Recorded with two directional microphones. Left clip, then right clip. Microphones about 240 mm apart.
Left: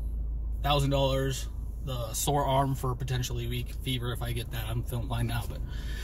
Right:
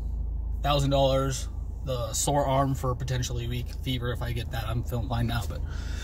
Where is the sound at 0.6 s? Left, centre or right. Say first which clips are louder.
Right 3 dB; centre.